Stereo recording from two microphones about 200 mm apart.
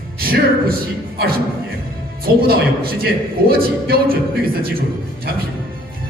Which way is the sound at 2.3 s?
50° right (ahead or behind).